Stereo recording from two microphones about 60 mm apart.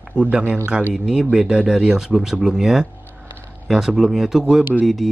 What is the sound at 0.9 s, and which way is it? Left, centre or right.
Speech, centre.